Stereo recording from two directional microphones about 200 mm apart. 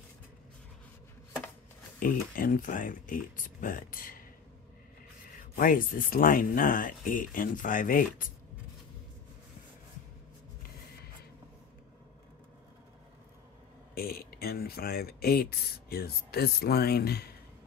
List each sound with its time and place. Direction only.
2.0 s speech: 45° left (ahead or behind)
5.6 s speech: 45° left (ahead or behind)
13.9 s speech: 50° left (ahead or behind)